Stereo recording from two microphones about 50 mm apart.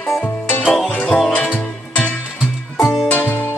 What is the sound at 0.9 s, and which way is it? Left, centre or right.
Music, left.